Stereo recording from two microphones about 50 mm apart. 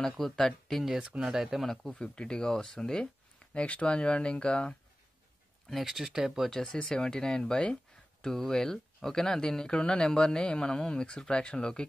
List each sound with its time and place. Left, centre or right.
0.0 s speech: centre
0.8 s speech: centre
1.9 s speech: centre
3.5 s speech: left
5.7 s speech: centre
6.5 s speech: centre